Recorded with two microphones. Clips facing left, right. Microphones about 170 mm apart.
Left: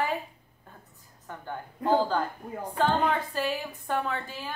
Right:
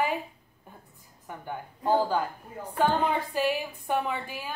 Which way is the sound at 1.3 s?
15° right (ahead or behind).